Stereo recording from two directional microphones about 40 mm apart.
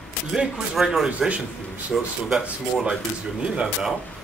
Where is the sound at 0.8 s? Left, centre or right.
Centre.